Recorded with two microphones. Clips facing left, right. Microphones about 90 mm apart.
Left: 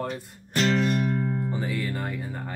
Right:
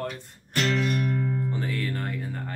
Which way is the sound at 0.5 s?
35° left (ahead or behind).